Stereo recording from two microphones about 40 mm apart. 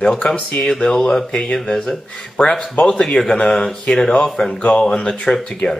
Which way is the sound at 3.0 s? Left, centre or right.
Centre.